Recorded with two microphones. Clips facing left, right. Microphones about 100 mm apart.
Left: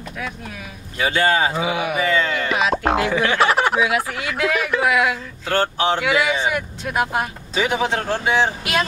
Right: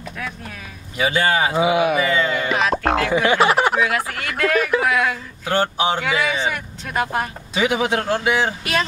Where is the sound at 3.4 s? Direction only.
5° right (ahead or behind).